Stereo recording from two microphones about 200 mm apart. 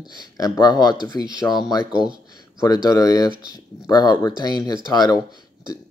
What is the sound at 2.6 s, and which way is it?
Speech, 20° left (ahead or behind).